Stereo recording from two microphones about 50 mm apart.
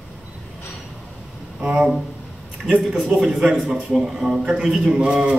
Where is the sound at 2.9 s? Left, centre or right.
Centre.